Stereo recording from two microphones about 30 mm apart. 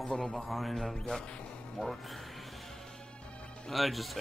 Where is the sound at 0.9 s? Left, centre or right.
Left.